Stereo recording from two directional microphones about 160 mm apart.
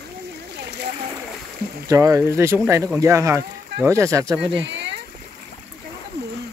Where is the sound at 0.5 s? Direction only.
90° right.